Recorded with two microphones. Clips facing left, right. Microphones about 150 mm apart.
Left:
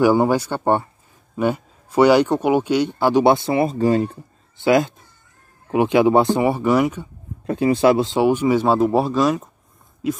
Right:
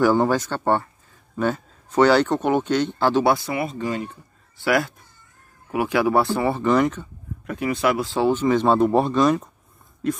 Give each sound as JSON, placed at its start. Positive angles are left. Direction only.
{"t": 0.0, "sound": "a man's voice", "side_deg": 10}
{"t": 3.3, "sound": "speech", "side_deg": 25}
{"t": 4.6, "sound": "speech", "side_deg": 20}
{"t": 7.4, "sound": "speech", "side_deg": 30}